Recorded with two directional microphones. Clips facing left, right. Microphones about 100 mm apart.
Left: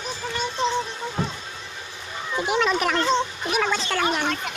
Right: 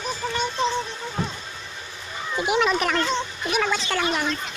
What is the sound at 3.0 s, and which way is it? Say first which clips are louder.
Cat: left 3 dB; 30° left (ahead or behind).